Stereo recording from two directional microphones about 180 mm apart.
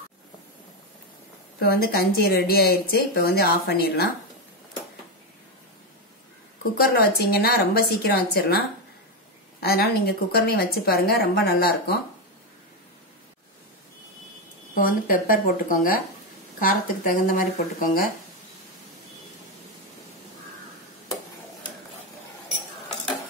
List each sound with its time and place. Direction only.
1.6 s speech: 60° left (ahead or behind)
6.8 s speech: 60° left (ahead or behind)
14.8 s speech: 50° left (ahead or behind)